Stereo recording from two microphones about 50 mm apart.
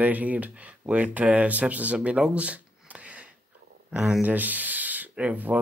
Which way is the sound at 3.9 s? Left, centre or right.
Centre.